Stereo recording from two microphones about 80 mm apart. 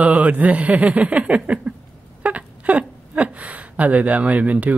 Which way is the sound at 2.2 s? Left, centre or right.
Centre.